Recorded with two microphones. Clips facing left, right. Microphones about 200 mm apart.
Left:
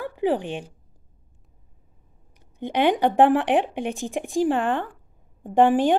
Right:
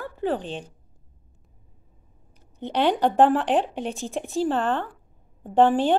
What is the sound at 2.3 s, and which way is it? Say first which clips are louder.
A woman's voice: left 1 dB; 15° left (ahead or behind).